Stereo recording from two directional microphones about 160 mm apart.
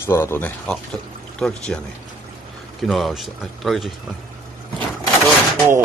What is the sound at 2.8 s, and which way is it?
Speech, centre (ahead or behind).